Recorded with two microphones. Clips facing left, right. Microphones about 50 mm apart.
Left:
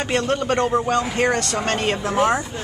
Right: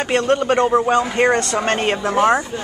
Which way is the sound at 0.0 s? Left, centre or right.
Centre.